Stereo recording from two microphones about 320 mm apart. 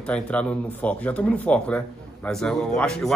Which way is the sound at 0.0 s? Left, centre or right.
Centre.